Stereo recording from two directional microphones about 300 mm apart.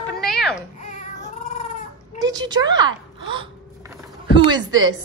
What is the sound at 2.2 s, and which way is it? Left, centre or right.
Speech, centre.